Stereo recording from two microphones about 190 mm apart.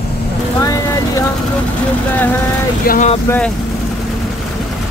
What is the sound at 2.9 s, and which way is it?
Speech, 40° left (ahead or behind).